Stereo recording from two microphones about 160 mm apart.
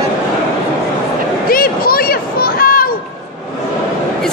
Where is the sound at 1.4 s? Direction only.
65° left (ahead or behind).